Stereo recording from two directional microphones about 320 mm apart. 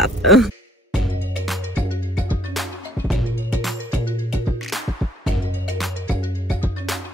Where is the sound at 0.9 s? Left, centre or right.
Centre.